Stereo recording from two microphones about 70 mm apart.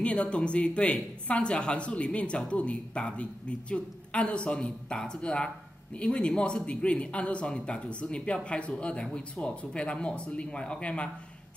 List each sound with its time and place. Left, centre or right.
0.0 s speech: centre